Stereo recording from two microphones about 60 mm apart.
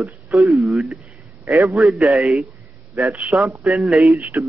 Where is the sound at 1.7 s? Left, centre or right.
Centre.